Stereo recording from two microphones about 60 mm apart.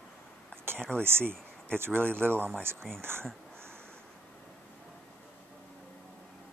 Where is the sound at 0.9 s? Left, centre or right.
Right.